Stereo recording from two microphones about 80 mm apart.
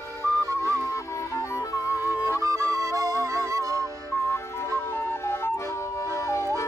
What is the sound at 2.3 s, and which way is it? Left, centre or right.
Music, right.